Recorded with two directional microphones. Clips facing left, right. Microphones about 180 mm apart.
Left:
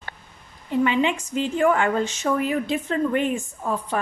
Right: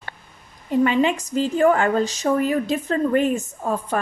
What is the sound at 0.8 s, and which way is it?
A woman's voice, 40° right (ahead or behind).